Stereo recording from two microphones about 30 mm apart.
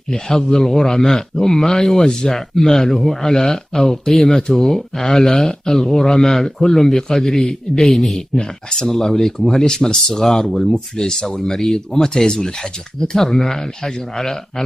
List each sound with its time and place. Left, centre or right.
0.3 s speech: centre
3.8 s speech: left
4.1 s speech: centre
9.9 s speech: centre